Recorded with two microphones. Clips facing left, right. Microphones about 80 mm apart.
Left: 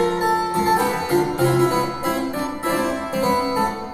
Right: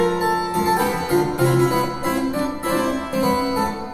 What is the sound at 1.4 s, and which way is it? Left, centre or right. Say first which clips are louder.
Harpsichord: even; left.